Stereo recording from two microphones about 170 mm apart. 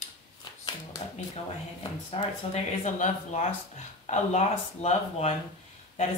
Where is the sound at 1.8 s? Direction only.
35° left (ahead or behind).